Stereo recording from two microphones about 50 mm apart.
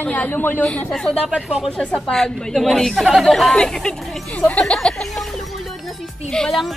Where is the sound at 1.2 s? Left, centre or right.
Centre.